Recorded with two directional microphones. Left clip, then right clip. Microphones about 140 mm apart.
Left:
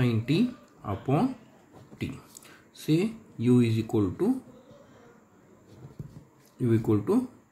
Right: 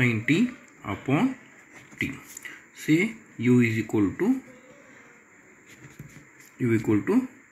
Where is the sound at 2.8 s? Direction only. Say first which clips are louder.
Right 4 dB; 15° right (ahead or behind).